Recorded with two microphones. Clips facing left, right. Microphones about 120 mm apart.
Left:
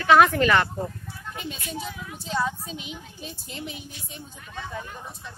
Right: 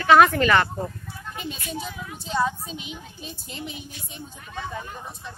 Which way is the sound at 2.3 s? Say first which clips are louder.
Right 3 dB; 20° right (ahead or behind).